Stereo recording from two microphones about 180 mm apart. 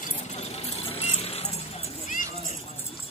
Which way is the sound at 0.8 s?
35° left (ahead or behind).